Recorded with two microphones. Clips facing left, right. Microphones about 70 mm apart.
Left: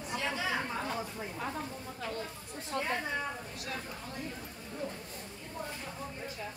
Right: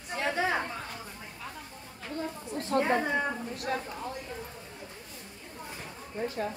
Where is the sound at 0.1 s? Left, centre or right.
Right.